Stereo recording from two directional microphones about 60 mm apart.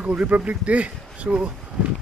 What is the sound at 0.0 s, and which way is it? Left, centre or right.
Speech, right.